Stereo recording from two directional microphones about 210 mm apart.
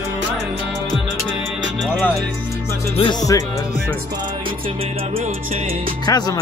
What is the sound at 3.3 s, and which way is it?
Music, 15° left (ahead or behind).